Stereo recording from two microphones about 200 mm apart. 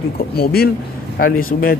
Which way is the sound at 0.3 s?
50° left (ahead or behind).